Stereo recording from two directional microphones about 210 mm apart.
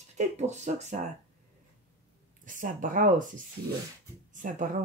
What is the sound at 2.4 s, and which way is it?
Speech, 40° right (ahead or behind).